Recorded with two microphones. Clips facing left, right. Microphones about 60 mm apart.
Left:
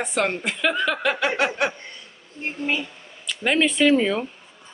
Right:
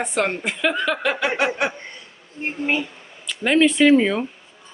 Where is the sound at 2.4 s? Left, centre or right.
Right.